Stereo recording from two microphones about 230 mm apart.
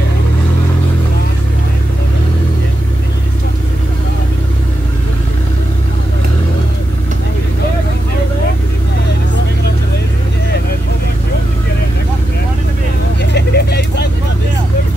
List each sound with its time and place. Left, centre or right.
13.3 s vehicle: left